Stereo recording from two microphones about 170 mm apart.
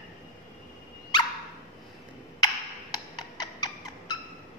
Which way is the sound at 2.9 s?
25° left (ahead or behind).